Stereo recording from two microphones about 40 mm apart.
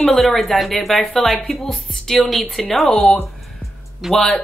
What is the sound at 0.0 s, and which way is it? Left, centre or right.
Speech, centre.